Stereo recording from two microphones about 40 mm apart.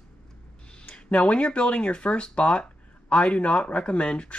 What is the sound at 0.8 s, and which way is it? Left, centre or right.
Speech, left.